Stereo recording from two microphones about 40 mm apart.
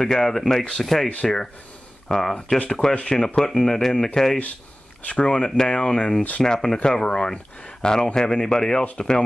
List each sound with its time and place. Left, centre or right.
0.0 s speech: centre
2.9 s speech: left
3.3 s speech: centre
5.0 s speech: left
5.3 s speech: centre